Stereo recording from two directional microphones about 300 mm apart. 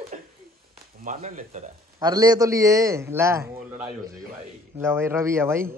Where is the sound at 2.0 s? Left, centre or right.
Centre.